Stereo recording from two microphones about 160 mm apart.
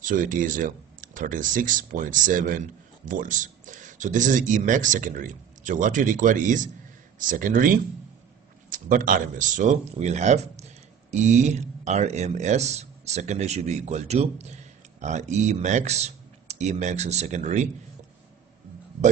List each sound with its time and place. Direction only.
0.0 s speech: 55° right (ahead or behind)